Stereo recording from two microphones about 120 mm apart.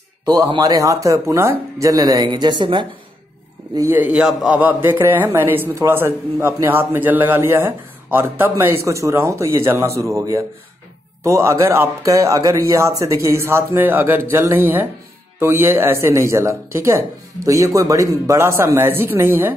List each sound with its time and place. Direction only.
0.2 s a man's voice: 35° right (ahead or behind)
3.7 s a man's voice: 20° right (ahead or behind)